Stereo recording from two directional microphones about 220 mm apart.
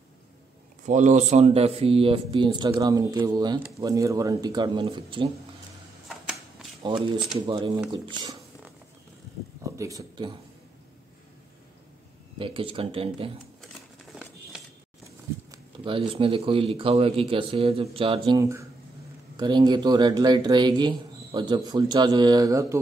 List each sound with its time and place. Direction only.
0.8 s speech: 35° right (ahead or behind)
7.4 s speech: 20° right (ahead or behind)
9.6 s a sound: 15° right (ahead or behind)
12.4 s speech: 25° right (ahead or behind)
15.0 s speech: 20° right (ahead or behind)